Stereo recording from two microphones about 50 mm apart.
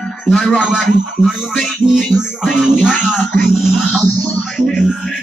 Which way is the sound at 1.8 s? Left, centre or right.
Centre.